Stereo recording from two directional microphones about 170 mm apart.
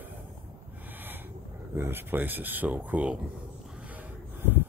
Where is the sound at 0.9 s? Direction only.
10° right (ahead or behind).